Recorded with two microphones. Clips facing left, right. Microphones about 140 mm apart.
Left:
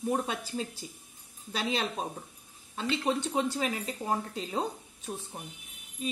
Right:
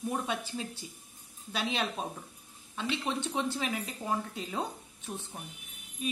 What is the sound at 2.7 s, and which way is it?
Speech, 40° left (ahead or behind).